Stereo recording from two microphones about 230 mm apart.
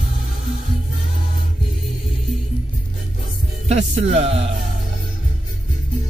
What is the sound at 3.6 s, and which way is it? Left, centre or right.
Music, right.